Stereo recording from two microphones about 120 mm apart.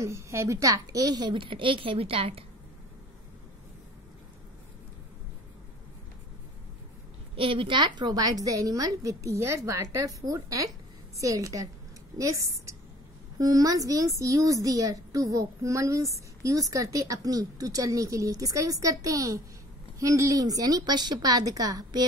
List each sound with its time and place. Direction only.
0.0 s a woman's voice: 25° right (ahead or behind); by 2.4 s 50° right (ahead or behind)
7.3 s a woman's voice: 45° right (ahead or behind); by 22.0 s 30° right (ahead or behind)